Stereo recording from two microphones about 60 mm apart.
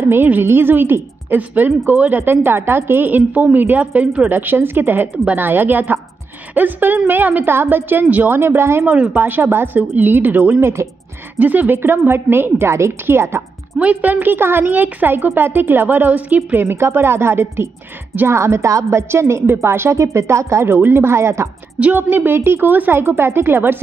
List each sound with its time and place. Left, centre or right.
0.0 s a woman's voice: right
4.3 s speech: right
8.4 s speech: right
8.8 s a woman's voice: right
9.2 s speech: right
13.7 s speech: right
16.6 s speech: right
21.9 s speech: right